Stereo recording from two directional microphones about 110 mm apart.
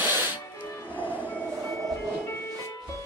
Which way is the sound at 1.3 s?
15° left (ahead or behind).